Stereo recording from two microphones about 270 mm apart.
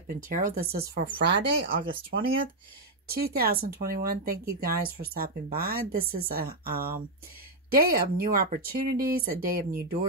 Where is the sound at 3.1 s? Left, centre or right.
Right.